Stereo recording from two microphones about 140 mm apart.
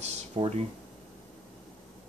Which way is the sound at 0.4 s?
45° right (ahead or behind).